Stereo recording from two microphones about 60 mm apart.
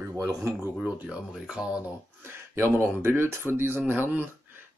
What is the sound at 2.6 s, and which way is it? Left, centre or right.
Speech, right.